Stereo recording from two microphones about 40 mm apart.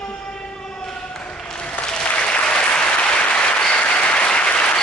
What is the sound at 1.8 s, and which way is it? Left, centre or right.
Applause, left.